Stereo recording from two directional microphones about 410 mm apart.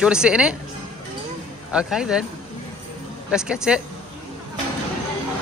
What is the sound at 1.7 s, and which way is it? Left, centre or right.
Speech, centre.